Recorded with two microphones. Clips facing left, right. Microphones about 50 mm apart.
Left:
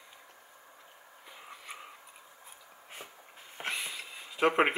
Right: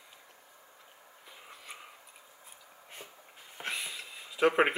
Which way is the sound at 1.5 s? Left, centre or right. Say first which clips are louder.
Left 2 dB; centre.